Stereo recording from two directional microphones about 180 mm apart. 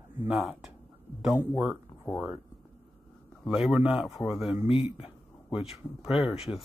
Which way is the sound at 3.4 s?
Centre (ahead or behind).